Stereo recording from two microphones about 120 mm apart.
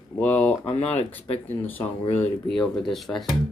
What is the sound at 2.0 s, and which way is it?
Speech, 70° left (ahead or behind).